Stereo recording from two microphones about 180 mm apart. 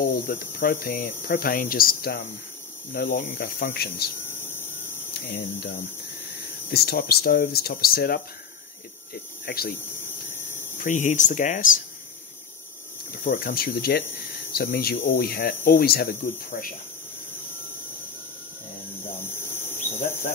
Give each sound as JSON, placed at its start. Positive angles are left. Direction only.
{"t": 0.0, "sound": "speech", "side_deg": 55}
{"t": 5.3, "sound": "speech", "side_deg": 75}
{"t": 9.1, "sound": "cricket", "side_deg": 60}
{"t": 10.8, "sound": "speech", "side_deg": 45}
{"t": 13.2, "sound": "speech", "side_deg": 50}
{"t": 19.5, "sound": "insect", "side_deg": 10}